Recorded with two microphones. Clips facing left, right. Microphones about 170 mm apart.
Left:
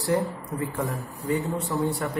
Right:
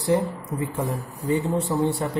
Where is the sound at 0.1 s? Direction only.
20° right (ahead or behind).